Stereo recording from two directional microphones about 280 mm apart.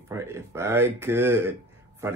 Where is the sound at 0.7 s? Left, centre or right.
Centre.